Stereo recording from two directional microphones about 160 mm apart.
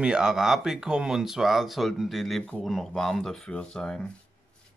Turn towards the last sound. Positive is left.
turn(degrees=5)  # may be behind; listen again after turning